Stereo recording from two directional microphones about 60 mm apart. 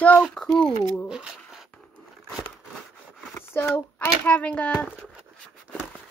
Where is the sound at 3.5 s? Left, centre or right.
Left.